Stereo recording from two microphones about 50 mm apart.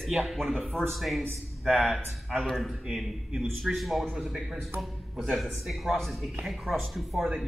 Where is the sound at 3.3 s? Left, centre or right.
Centre.